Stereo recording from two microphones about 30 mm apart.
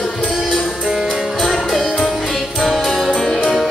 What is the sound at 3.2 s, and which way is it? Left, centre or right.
Music, centre.